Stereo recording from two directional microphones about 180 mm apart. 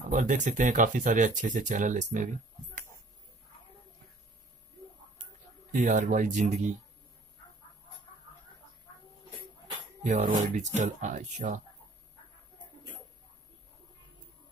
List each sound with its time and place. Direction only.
0.1 s speech: 45° right (ahead or behind)
5.2 s speech: 45° right (ahead or behind)
10.0 s speech: 40° right (ahead or behind)